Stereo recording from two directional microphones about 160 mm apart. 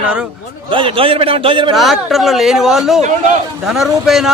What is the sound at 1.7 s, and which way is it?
Speech, centre (ahead or behind).